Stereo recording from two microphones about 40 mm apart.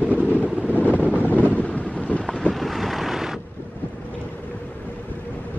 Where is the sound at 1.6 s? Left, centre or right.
Left.